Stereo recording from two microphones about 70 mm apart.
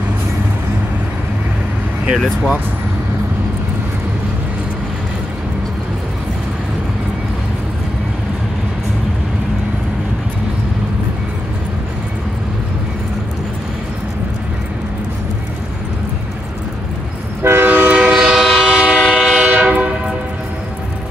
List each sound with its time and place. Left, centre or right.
2.1 s speech: centre
17.4 s train: right
18.1 s train: centre